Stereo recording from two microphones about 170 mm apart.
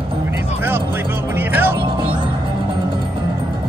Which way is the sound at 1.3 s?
10° right (ahead or behind).